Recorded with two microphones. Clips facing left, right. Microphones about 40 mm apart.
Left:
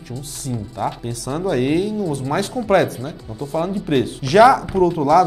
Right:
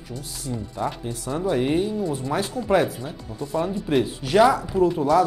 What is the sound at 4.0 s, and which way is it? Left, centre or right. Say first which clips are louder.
Speech: left 6 dB; left.